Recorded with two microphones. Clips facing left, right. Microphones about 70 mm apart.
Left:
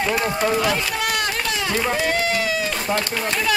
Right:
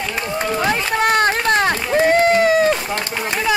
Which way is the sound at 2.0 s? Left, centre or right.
Right.